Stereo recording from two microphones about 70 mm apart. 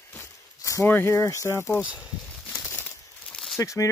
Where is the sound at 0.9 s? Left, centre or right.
Left.